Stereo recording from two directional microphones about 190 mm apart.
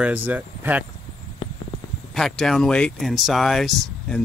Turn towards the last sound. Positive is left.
turn(degrees=0)  # may be behind; listen again after turning